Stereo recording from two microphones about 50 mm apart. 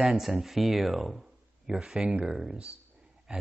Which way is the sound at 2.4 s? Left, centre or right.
Centre.